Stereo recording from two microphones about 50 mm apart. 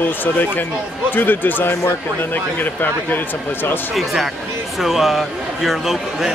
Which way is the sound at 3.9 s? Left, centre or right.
Centre.